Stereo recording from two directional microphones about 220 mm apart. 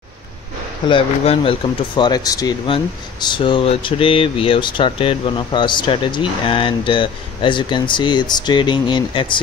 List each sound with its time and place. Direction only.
0.8 s speech: 25° left (ahead or behind)